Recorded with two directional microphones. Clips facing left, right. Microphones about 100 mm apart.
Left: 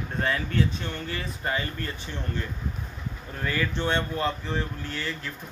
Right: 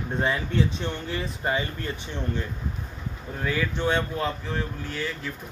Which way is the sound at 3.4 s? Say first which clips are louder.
Right 2 dB; 5° right (ahead or behind).